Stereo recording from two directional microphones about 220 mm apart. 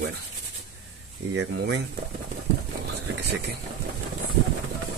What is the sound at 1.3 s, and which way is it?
Speech, 50° right (ahead or behind).